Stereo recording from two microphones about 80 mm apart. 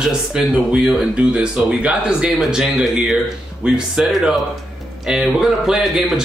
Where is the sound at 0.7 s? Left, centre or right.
Centre.